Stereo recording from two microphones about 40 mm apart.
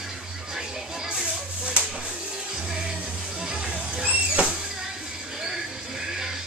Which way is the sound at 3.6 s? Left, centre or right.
Right.